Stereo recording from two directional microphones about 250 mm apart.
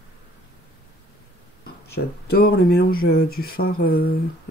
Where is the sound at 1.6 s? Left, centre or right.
Left.